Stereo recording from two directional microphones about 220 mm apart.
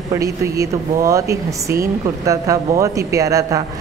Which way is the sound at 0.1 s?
15° right (ahead or behind).